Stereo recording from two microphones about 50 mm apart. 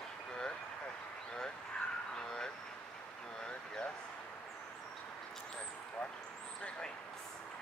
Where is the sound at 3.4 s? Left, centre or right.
Centre.